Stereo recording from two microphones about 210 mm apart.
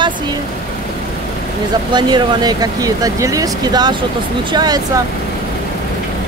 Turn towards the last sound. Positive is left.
turn(degrees=-20)  # may be behind; listen again after turning